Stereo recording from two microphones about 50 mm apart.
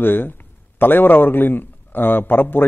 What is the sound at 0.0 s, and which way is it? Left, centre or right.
A man's voice, left.